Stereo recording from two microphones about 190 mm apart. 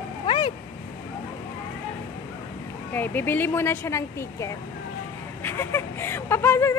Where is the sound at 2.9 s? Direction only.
10° left (ahead or behind).